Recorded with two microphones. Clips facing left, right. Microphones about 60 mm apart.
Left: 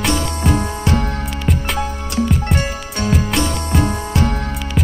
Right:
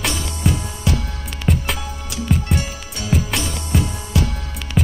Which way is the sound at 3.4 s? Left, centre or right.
Left.